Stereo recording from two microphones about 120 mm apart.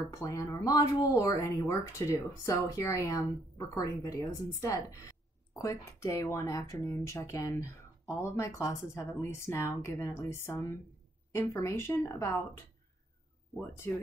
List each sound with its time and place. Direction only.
0.1 s speech: 30° left (ahead or behind)